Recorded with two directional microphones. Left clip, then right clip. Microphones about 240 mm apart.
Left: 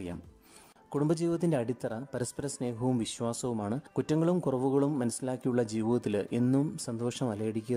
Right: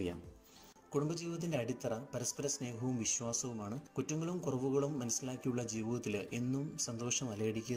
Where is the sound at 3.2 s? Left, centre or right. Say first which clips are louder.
Left 7 dB; left.